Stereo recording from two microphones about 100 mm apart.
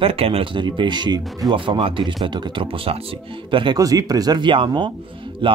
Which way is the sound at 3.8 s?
35° right (ahead or behind).